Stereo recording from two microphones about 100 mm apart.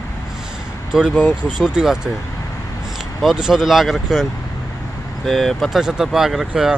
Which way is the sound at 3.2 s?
5° right (ahead or behind).